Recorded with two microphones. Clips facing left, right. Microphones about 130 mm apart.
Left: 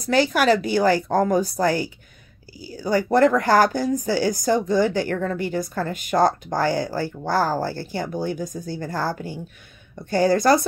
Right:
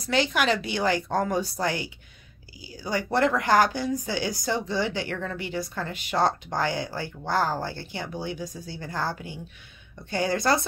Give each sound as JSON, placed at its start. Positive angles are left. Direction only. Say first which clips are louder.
{"t": 0.0, "sound": "speech", "louder": "left 6 dB", "side_deg": 40}